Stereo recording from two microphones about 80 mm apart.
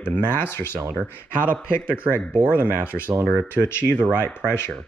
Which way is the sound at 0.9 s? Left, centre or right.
Centre.